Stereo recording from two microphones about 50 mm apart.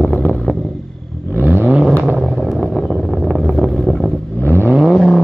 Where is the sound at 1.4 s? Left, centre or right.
Right.